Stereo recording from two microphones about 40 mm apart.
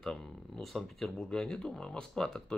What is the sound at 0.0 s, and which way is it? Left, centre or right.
Speech, centre.